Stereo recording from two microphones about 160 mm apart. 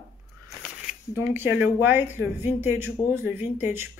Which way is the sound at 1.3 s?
10° right (ahead or behind).